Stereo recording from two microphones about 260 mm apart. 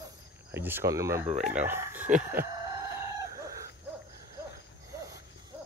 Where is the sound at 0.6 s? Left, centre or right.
Centre.